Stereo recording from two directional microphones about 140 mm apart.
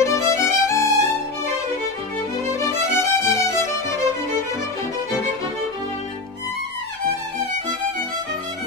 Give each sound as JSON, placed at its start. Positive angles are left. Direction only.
{"t": 0.0, "sound": "music", "side_deg": 20}
{"t": 2.6, "sound": "music", "side_deg": 20}